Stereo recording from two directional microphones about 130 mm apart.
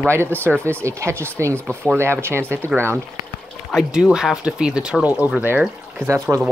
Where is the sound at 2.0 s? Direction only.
20° right (ahead or behind).